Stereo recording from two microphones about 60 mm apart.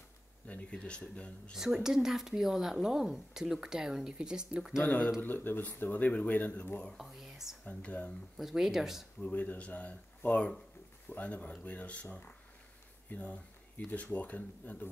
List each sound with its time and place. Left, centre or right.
0.5 s speech: centre
1.5 s speech: centre
4.8 s speech: left
7.0 s speech: centre
7.6 s speech: left
8.4 s speech: centre
9.2 s speech: left